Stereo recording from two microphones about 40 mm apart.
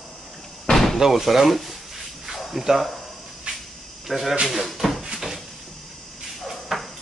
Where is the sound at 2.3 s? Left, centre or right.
Centre.